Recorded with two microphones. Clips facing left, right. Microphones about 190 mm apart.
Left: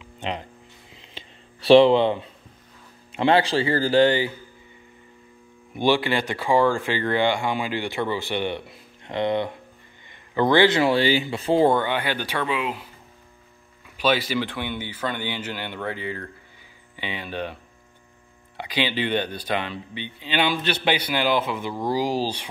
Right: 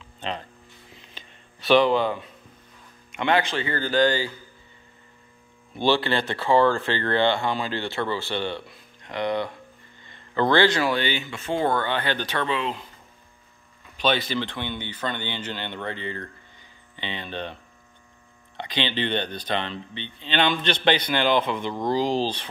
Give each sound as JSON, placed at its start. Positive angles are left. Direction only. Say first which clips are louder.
{"t": 0.0, "sound": "a sound", "louder": "left 2 dB", "side_deg": 15}
{"t": 1.1, "sound": "a sound", "louder": "left 3 dB", "side_deg": 30}
{"t": 3.1, "sound": "speech", "louder": "left 4 dB", "side_deg": 30}
{"t": 5.8, "sound": "speech", "louder": "left 1 dB", "side_deg": 15}
{"t": 11.7, "sound": "speech", "louder": "left 2 dB", "side_deg": 15}
{"t": 13.9, "sound": "speech", "louder": "left 2 dB", "side_deg": 10}
{"t": 18.6, "sound": "speech", "louder": "left 2 dB", "side_deg": 10}